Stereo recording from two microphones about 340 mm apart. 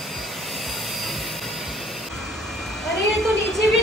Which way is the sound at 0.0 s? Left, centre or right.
Centre.